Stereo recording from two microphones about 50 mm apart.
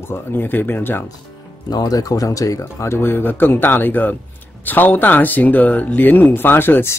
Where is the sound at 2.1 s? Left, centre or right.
Left.